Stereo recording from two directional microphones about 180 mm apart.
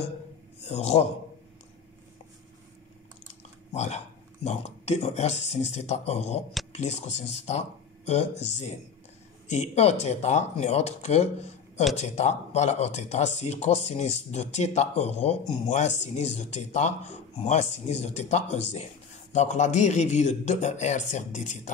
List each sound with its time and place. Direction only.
0.6 s a man's voice: 35° left (ahead or behind)
3.7 s speech: 40° left (ahead or behind)